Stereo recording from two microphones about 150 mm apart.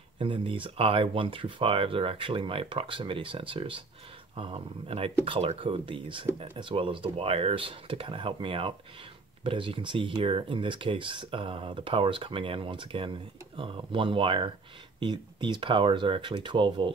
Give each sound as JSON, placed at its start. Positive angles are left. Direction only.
{"t": 0.2, "sound": "speech", "side_deg": -35}